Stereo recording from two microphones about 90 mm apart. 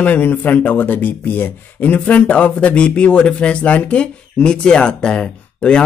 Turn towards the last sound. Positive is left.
turn(degrees=10)  # may be behind; listen again after turning